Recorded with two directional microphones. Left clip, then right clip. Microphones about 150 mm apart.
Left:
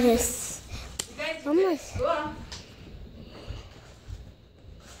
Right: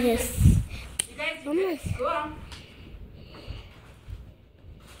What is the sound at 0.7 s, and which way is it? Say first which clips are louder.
Clapping: right 1 dB; 15° left (ahead or behind).